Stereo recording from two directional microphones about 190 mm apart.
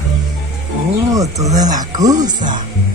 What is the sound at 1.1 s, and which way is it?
Speech, 20° right (ahead or behind).